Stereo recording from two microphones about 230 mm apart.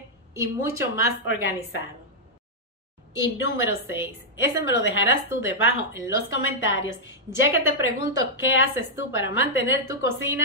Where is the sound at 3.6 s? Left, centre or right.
Centre.